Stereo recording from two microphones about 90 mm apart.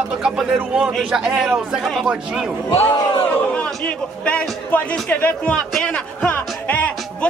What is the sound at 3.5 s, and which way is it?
A man's voice, 15° left (ahead or behind).